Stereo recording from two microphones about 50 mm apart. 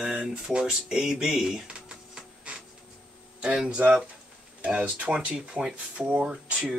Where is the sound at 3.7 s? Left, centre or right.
Right.